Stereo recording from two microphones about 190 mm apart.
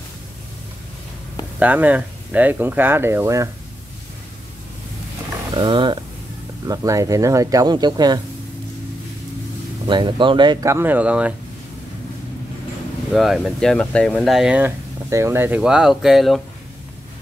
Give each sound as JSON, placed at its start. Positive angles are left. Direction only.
{"t": 1.6, "sound": "speech", "side_deg": -10}
{"t": 5.6, "sound": "speech", "side_deg": -25}
{"t": 9.8, "sound": "speech", "side_deg": -25}
{"t": 13.1, "sound": "speech", "side_deg": 0}